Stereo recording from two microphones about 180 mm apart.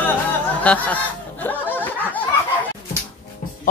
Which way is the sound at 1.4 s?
10° left (ahead or behind).